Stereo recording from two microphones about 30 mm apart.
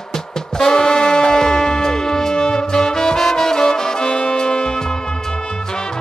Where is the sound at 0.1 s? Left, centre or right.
Centre.